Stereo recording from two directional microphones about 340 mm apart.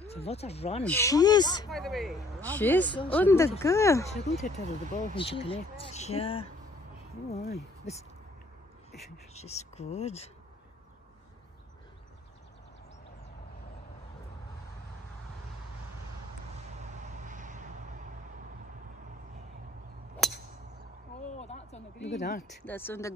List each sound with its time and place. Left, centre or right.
0.0 s speech: centre
1.7 s speech: centre
4.1 s speech: centre
9.3 s speech: centre
17.2 s vehicle: right
20.2 s a sound: centre
21.4 s a sound: centre
22.0 s speech: left
22.7 s speech: centre